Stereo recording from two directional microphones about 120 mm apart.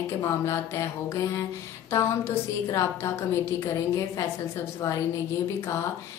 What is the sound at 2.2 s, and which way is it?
A woman's voice, 25° left (ahead or behind).